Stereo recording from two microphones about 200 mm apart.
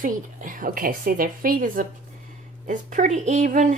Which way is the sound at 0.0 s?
40° right (ahead or behind).